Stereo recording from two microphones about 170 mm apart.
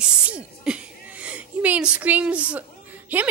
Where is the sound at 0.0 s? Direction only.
5° right (ahead or behind).